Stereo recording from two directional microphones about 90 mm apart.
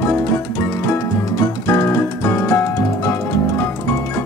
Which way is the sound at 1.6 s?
35° left (ahead or behind).